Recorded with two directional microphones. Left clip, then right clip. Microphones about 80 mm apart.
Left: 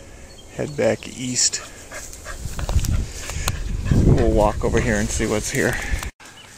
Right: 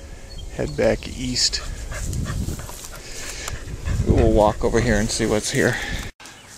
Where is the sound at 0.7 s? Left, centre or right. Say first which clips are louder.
Even; centre.